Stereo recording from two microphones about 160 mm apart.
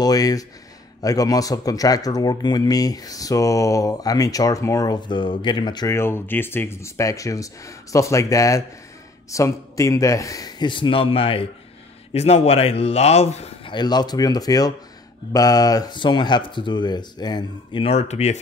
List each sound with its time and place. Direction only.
0.0 s speech: 25° left (ahead or behind)
5.9 s a man's voice: 15° left (ahead or behind); by 13.7 s 40° left (ahead or behind)
13.7 s speech: 25° left (ahead or behind)
17.8 s speech: 40° left (ahead or behind)